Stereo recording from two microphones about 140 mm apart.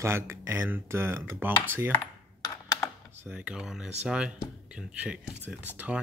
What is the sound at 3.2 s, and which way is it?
Speech, 10° right (ahead or behind).